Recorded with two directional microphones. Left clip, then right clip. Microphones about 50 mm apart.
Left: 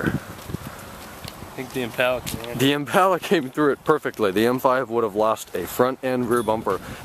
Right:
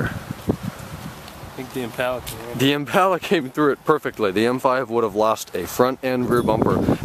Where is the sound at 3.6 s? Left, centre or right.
Centre.